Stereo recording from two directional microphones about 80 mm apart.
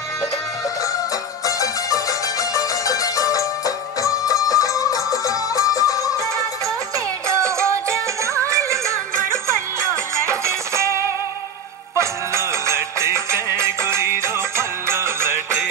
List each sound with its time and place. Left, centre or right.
1.4 s music: left
7.2 s music: right